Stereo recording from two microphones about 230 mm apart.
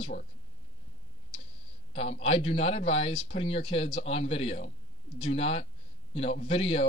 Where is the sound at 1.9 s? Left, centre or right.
Left.